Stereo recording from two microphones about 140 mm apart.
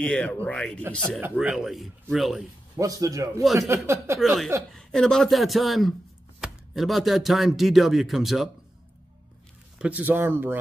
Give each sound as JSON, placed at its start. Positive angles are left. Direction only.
{"t": 0.0, "sound": "speech", "side_deg": 5}
{"t": 1.2, "sound": "speech", "side_deg": -10}
{"t": 2.7, "sound": "speech", "side_deg": -25}
{"t": 4.2, "sound": "speech", "side_deg": 0}
{"t": 9.8, "sound": "speech", "side_deg": -10}